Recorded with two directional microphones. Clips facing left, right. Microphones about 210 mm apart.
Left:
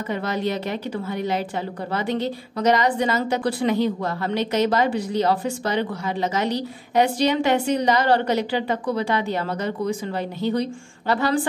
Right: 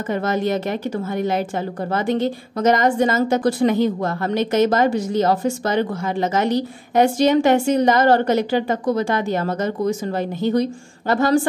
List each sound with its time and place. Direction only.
0.1 s a woman's voice: 45° right (ahead or behind)